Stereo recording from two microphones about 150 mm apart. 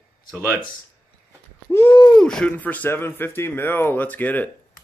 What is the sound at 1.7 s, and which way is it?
Speech, 15° left (ahead or behind).